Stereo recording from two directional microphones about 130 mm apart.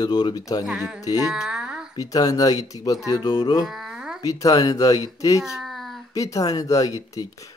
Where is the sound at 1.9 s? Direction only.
30° left (ahead or behind).